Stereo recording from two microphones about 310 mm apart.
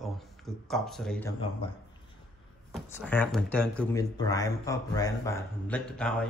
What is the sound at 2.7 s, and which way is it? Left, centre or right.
Speech, centre.